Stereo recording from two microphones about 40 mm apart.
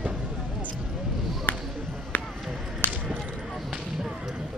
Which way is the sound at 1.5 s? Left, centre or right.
Left.